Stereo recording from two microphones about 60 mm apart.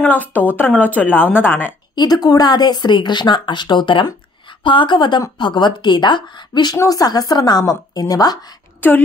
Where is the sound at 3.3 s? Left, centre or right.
Left.